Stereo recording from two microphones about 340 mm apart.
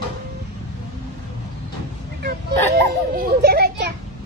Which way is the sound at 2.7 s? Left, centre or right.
Right.